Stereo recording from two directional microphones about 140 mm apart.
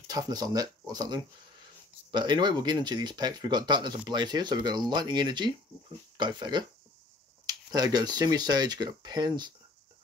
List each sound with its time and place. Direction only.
0.0 s speech: 25° right (ahead or behind)